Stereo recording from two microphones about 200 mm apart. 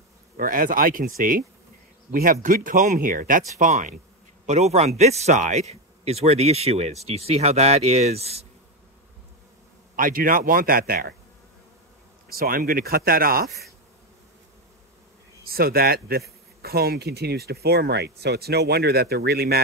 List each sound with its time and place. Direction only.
0.4 s speech: 45° right (ahead or behind)
2.1 s insect: 10° right (ahead or behind)
2.4 s a man's voice: 40° right (ahead or behind)
9.9 s speech: 45° right (ahead or behind)
12.3 s speech: 45° right (ahead or behind)
15.4 s speech: 50° right (ahead or behind)